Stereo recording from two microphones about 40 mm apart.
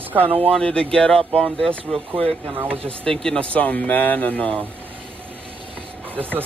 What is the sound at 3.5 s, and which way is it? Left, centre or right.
Speech, left.